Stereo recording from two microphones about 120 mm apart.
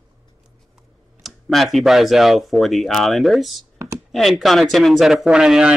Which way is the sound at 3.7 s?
25° right (ahead or behind).